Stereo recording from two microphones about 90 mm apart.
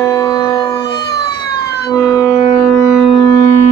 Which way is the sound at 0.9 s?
55° left (ahead or behind).